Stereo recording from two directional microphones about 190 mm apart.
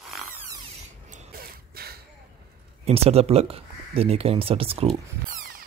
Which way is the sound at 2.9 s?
30° right (ahead or behind).